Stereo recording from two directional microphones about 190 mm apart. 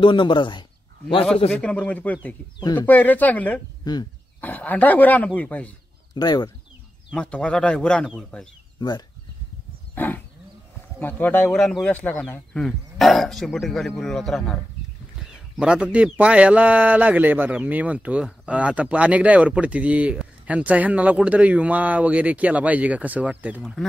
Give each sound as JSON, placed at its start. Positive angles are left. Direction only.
{"t": 0.0, "sound": "speech", "side_deg": 25}
{"t": 1.5, "sound": "speech", "side_deg": 5}
{"t": 2.6, "sound": "speech", "side_deg": 20}
{"t": 2.9, "sound": "speech", "side_deg": 10}
{"t": 3.8, "sound": "speech", "side_deg": 20}
{"t": 4.4, "sound": "speech", "side_deg": 10}
{"t": 6.1, "sound": "speech", "side_deg": 20}
{"t": 7.1, "sound": "speech", "side_deg": 5}
{"t": 8.7, "sound": "speech", "side_deg": 25}
{"t": 9.9, "sound": "roaring cats", "side_deg": 10}
{"t": 11.0, "sound": "speech", "side_deg": 10}